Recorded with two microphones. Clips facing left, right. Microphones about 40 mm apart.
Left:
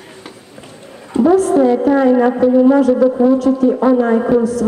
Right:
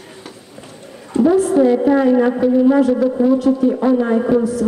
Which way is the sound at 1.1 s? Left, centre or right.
Centre.